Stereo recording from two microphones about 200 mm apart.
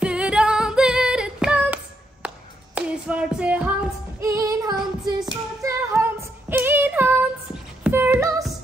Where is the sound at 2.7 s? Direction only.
5° right (ahead or behind).